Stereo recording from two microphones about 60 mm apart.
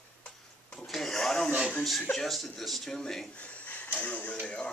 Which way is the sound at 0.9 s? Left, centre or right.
Centre.